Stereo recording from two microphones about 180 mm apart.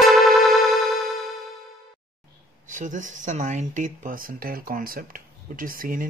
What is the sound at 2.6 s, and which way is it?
Speech, 45° right (ahead or behind).